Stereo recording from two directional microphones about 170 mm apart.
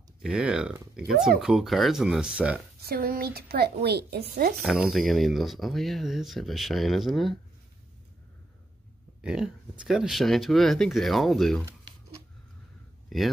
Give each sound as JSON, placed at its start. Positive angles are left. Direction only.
{"t": 0.2, "sound": "speech", "side_deg": -5}
{"t": 2.8, "sound": "speech", "side_deg": -60}
{"t": 4.6, "sound": "speech", "side_deg": 0}
{"t": 9.2, "sound": "speech", "side_deg": -5}
{"t": 13.1, "sound": "speech", "side_deg": 0}